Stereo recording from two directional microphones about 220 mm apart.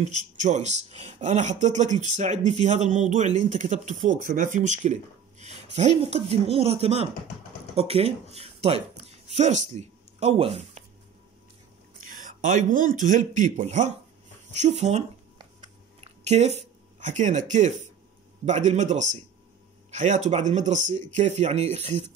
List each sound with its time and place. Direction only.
0.0 s speech: 35° right (ahead or behind)
12.0 s a man's voice: 40° right (ahead or behind)